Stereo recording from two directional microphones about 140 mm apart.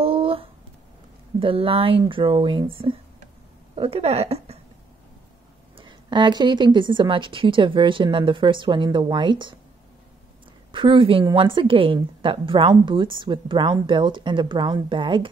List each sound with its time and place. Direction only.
0.0 s a sound: 40° right (ahead or behind)
1.4 s a woman's voice: 40° right (ahead or behind)
5.8 s a woman's voice: 35° right (ahead or behind)
10.7 s a woman's voice: 35° right (ahead or behind)